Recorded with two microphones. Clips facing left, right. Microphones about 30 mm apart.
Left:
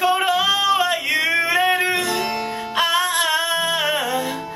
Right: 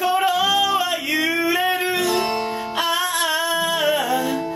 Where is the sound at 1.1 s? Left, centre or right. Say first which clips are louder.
Right 1 dB; left.